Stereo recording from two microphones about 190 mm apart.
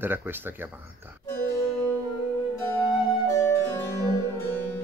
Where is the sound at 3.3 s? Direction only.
15° left (ahead or behind).